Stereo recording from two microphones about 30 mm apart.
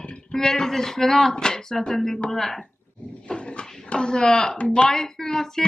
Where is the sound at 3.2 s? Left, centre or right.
Left.